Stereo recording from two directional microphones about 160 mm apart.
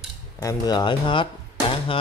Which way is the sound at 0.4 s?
20° left (ahead or behind).